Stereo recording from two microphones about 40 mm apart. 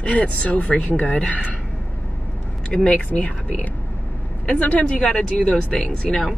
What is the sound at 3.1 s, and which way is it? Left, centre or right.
Speech, left.